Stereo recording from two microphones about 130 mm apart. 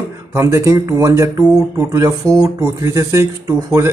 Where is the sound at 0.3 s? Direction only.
20° right (ahead or behind).